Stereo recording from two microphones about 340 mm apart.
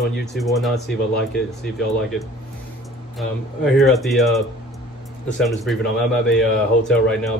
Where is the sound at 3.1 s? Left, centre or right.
Centre.